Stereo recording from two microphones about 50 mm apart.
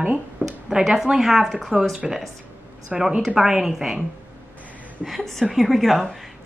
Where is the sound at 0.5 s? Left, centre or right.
Centre.